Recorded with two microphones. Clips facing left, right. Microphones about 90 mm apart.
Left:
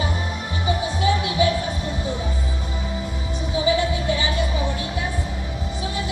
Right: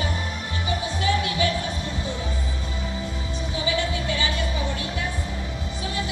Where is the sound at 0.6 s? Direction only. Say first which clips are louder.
Left 4 dB; 20° left (ahead or behind).